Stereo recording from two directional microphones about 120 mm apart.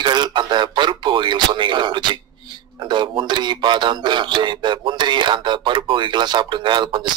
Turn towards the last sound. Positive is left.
turn(degrees=-40)  # may be behind; listen again after turning